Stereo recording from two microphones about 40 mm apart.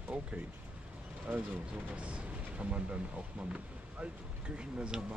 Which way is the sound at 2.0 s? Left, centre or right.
Right.